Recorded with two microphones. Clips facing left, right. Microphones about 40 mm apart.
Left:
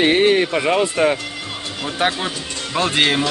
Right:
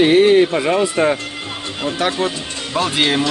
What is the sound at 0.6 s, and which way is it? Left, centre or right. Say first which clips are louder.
Speech: right 1 dB; centre.